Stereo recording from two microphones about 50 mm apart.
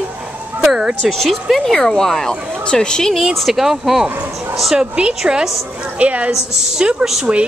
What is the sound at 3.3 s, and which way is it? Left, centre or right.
Speech, centre.